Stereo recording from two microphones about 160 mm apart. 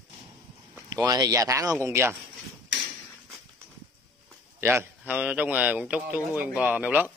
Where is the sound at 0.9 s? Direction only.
25° right (ahead or behind).